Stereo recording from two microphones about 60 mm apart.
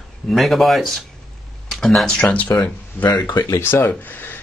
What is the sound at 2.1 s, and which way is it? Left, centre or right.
Speech, centre.